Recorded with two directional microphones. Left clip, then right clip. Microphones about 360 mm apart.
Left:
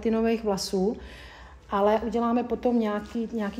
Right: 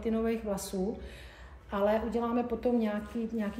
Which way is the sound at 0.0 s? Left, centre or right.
Left.